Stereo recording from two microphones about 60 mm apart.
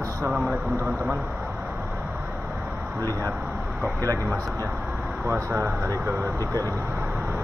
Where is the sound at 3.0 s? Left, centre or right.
Right.